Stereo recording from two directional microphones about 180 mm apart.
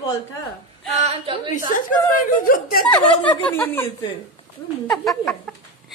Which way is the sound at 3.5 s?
10° left (ahead or behind).